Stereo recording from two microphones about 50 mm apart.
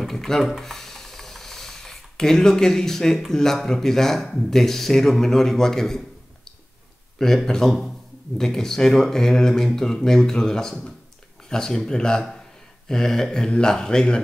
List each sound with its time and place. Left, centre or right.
0.0 s a sound: centre
3.2 s speech: centre
7.2 s speech: centre